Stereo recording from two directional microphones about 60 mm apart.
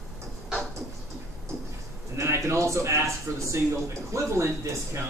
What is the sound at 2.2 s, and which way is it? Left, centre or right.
A man's voice, right.